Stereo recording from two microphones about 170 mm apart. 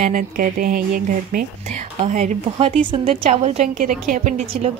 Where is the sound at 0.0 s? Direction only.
50° right (ahead or behind).